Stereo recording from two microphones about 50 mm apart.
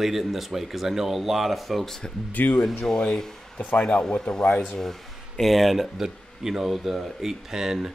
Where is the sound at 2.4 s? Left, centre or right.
Left.